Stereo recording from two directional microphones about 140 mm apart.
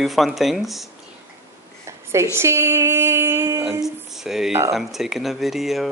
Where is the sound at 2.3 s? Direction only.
20° right (ahead or behind).